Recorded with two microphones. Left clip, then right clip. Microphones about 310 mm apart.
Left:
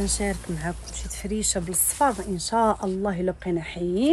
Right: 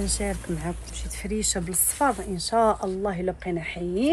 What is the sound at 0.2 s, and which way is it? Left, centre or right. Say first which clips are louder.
A woman's voice: left 1 dB; left.